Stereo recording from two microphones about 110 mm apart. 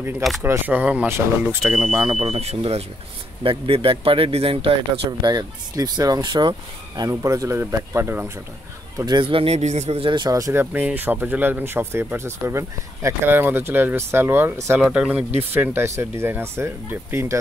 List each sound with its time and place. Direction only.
0.4 s speech: 20° right (ahead or behind)
1.6 s speech: 5° right (ahead or behind)
2.0 s speech: 65° right (ahead or behind)
3.4 s speech: 55° right (ahead or behind)
5.2 s speech: 40° right (ahead or behind)
7.0 s speech: 30° right (ahead or behind)
9.0 s speech: 45° right (ahead or behind)
10.3 s speech: 30° right (ahead or behind)
10.6 s speech: 15° right (ahead or behind)
14.8 s speech: 10° right (ahead or behind)
15.5 s speech: 20° right (ahead or behind)